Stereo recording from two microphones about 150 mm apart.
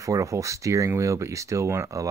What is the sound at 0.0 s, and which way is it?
Speech, 20° right (ahead or behind).